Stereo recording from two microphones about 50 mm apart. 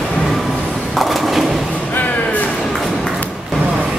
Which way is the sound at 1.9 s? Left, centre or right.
Left.